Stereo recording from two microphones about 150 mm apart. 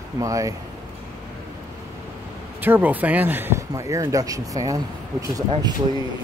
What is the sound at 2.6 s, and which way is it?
Speech, 10° right (ahead or behind).